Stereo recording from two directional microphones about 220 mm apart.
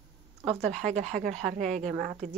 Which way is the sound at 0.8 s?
35° right (ahead or behind).